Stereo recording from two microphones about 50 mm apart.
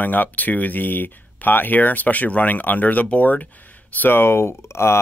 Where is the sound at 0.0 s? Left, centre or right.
Left.